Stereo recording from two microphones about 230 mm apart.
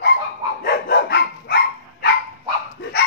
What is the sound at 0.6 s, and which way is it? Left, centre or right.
Dog, left.